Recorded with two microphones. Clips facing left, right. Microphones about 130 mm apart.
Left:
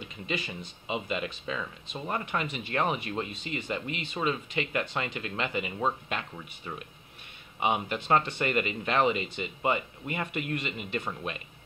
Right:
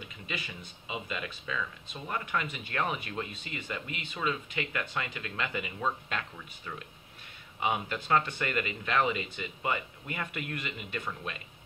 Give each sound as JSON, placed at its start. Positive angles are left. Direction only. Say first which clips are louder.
{"t": 0.8, "sound": "speech", "louder": "left 5 dB", "side_deg": 25}